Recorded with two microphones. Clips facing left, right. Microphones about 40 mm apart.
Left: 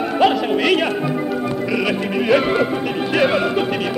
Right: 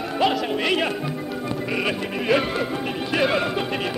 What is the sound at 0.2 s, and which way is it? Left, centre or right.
Speech, centre.